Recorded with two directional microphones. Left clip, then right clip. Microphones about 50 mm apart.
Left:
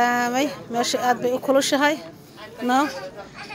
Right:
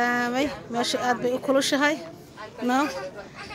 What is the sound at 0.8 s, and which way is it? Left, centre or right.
Speech, left.